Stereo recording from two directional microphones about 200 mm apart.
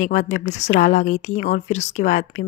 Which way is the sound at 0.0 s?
40° left (ahead or behind).